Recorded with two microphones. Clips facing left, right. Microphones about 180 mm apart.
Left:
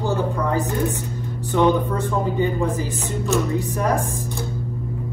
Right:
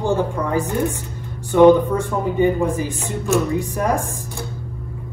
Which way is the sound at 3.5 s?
15° right (ahead or behind).